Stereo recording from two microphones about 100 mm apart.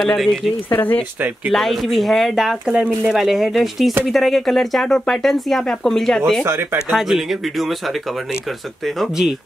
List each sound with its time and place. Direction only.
0.0 s speech: centre (ahead or behind)
0.7 s speech: 20° left (ahead or behind)
1.5 s speech: centre (ahead or behind)
6.4 s speech: 25° right (ahead or behind)
6.9 s speech: centre (ahead or behind)
8.8 s speech: centre (ahead or behind)